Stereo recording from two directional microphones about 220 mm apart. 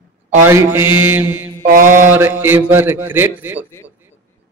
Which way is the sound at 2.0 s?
10° right (ahead or behind).